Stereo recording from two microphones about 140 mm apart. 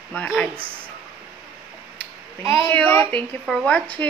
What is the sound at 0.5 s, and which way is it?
Speech, 15° right (ahead or behind).